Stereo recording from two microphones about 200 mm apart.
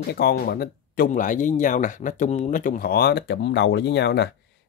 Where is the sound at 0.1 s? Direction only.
55° left (ahead or behind).